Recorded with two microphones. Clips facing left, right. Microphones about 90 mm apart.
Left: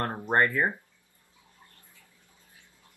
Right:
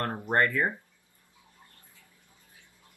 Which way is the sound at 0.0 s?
20° left (ahead or behind).